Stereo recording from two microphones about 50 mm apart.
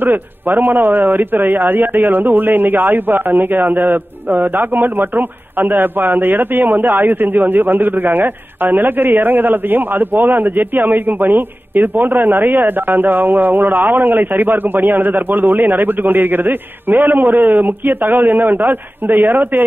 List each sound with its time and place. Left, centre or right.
0.0 s speech: right